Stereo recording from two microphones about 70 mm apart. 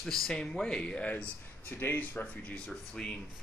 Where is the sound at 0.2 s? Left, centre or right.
Centre; by 2.5 s left.